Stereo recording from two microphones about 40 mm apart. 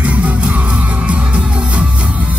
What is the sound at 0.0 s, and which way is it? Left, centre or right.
Music, right.